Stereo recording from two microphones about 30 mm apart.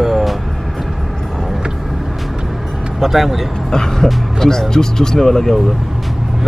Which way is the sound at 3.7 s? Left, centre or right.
Centre.